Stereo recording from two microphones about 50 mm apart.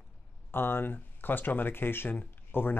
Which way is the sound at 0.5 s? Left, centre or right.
Left.